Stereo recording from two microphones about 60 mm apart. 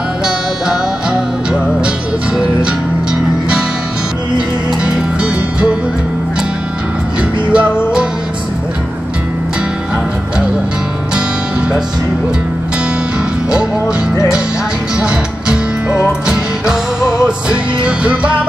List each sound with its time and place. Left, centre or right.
4.8 s music: centre
7.5 s music: centre
15.0 s music: centre